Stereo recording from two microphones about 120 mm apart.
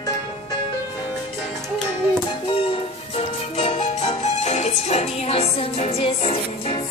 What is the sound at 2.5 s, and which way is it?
Music, 55° left (ahead or behind).